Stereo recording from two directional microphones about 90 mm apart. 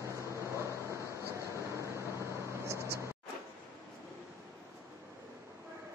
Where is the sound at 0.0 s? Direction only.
30° right (ahead or behind).